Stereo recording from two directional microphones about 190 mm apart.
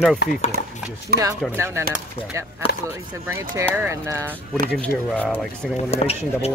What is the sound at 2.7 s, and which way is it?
Speech, 60° left (ahead or behind).